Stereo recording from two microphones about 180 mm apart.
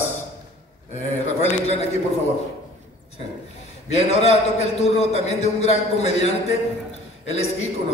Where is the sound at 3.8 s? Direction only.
35° left (ahead or behind).